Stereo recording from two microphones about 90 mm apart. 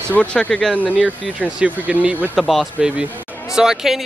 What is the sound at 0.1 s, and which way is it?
Speech, 15° left (ahead or behind).